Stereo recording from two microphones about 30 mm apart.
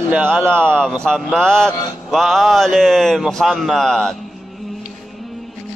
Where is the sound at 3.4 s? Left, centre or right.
Centre.